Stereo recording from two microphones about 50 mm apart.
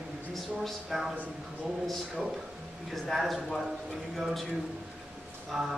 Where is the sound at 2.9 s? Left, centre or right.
Centre.